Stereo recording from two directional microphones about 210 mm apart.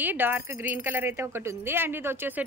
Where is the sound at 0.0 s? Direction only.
10° right (ahead or behind).